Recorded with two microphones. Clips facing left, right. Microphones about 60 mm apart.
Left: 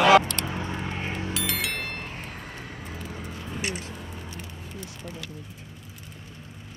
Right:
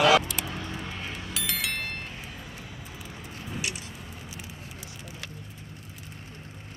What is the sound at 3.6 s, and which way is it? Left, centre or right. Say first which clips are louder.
Vehicle: left 4 dB; left.